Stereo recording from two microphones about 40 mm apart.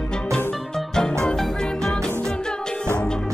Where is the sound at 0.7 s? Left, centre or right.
Centre.